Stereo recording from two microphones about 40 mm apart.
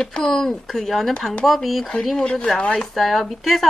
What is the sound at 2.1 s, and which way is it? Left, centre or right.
Speech, centre.